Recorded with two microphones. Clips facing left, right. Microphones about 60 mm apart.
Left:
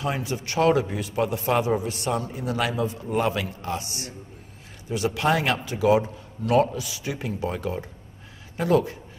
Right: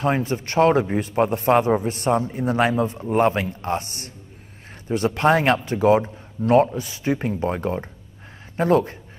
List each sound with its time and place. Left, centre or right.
0.0 s a man's voice: right